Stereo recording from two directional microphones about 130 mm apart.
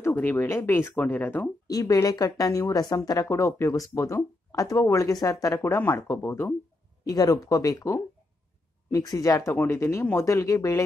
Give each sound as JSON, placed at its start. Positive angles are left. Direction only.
{"t": 0.0, "sound": "speech", "side_deg": 15}
{"t": 1.7, "sound": "speech", "side_deg": 30}